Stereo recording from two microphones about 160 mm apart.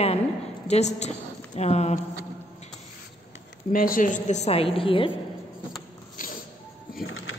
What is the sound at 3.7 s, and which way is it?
A woman's voice, 60° left (ahead or behind).